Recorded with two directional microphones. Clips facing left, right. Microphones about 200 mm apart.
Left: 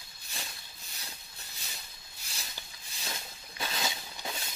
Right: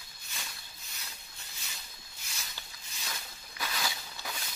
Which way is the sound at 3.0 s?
25° left (ahead or behind).